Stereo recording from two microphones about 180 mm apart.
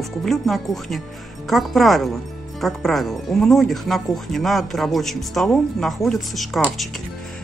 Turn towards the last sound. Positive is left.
turn(degrees=0)  # may be behind; listen again after turning